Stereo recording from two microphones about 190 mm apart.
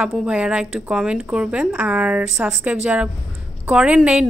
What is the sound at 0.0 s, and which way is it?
A woman's voice, 5° right (ahead or behind).